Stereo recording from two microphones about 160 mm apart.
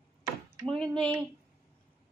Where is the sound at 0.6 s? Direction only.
5° left (ahead or behind).